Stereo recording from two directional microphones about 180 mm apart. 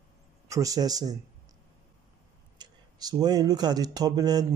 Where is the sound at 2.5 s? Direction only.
20° right (ahead or behind).